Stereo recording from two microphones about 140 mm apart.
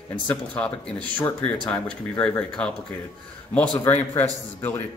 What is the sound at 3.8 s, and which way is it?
Speech, 15° left (ahead or behind).